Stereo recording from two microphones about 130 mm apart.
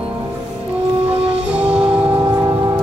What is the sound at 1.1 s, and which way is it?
Music, 50° right (ahead or behind).